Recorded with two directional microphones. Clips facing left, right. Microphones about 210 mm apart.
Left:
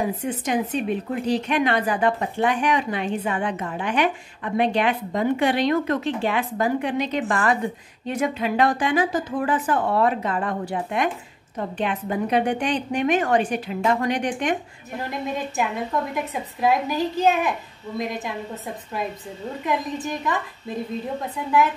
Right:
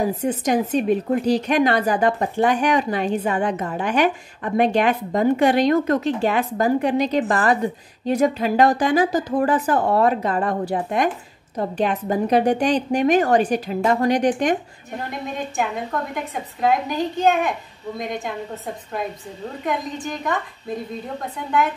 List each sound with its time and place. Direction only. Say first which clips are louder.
0.2 s a woman's voice: right 4 dB; 40° right (ahead or behind)
15.0 s a woman's voice: left 2 dB; 5° left (ahead or behind)
16.6 s a woman's voice: right 1 dB; 5° left (ahead or behind)
19.6 s a woman's voice: even; centre (ahead or behind)